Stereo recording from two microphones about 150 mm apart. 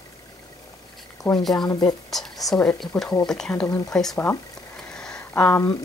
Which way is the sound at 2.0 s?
Centre (ahead or behind).